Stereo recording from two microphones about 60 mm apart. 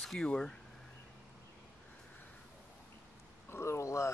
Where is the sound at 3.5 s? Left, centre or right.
Left.